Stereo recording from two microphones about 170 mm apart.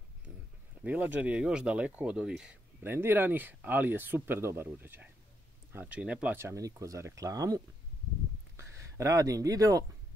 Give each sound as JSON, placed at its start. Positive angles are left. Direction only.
{"t": 0.8, "sound": "speech", "side_deg": -10}